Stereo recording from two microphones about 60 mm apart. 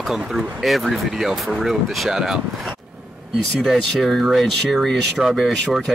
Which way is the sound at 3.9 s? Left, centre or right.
Centre.